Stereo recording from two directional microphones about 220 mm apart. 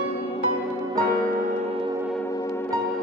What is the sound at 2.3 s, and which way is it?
Music, 15° left (ahead or behind).